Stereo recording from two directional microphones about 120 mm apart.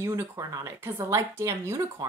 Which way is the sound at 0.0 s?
25° right (ahead or behind).